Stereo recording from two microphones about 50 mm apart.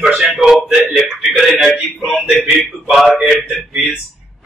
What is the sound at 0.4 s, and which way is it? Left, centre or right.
Speech, centre.